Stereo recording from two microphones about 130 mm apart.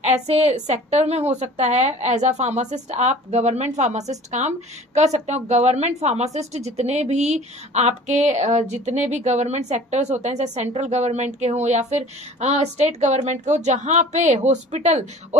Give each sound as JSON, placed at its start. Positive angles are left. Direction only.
{"t": 0.0, "sound": "a woman's voice", "side_deg": -55}